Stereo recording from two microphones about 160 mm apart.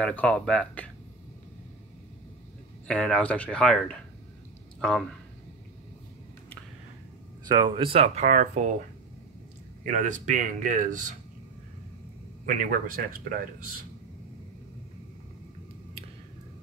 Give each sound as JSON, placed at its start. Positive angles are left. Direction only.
{"t": 0.0, "sound": "speech", "side_deg": 10}
{"t": 2.9, "sound": "speech", "side_deg": 5}
{"t": 7.4, "sound": "speech", "side_deg": -25}
{"t": 9.8, "sound": "speech", "side_deg": -50}
{"t": 12.4, "sound": "a man's voice", "side_deg": -60}